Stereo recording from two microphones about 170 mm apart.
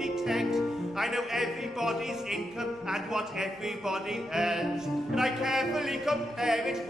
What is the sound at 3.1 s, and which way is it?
Speech, 5° right (ahead or behind).